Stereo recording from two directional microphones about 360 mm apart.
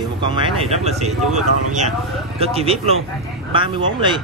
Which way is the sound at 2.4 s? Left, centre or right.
Centre.